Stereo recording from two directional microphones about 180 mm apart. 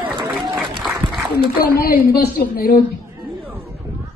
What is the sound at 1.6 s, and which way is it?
A man's voice, 55° left (ahead or behind).